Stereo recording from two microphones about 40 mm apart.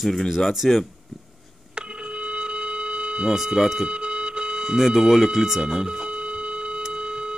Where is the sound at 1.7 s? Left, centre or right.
Right.